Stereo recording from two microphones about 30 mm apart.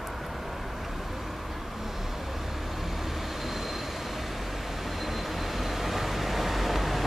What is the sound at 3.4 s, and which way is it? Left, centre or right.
Train, centre.